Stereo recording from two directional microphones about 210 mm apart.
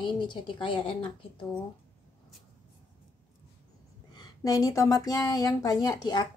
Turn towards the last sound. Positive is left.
turn(degrees=20)  # may be behind; listen again after turning